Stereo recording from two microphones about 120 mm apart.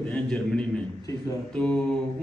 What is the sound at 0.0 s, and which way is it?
Speech, 10° left (ahead or behind).